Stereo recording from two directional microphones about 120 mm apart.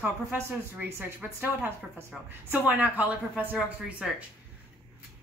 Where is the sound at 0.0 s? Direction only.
15° right (ahead or behind).